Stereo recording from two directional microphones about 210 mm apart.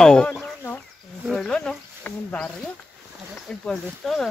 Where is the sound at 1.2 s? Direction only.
Centre (ahead or behind).